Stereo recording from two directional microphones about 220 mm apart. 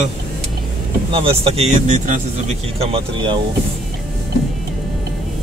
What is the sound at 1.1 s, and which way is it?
Speech, 25° right (ahead or behind).